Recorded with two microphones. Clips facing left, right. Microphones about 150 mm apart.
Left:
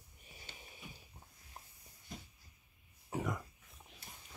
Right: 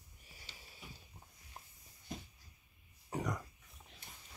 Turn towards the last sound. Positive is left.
turn(degrees=0)  # may be behind; listen again after turning